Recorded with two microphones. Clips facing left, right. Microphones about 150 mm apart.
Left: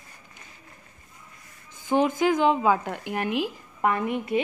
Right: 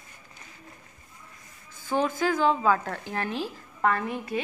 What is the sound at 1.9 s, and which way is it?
Speech, 20° left (ahead or behind).